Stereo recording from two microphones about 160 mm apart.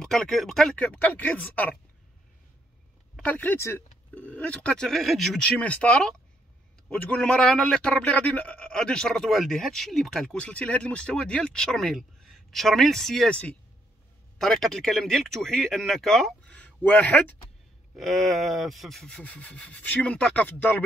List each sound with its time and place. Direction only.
0.0 s speech: centre (ahead or behind)
3.2 s speech: 10° left (ahead or behind)